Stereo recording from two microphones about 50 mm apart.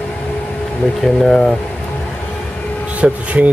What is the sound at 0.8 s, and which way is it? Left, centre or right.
Speech, centre.